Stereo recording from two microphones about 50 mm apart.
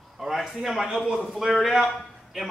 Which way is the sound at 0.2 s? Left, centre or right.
Centre.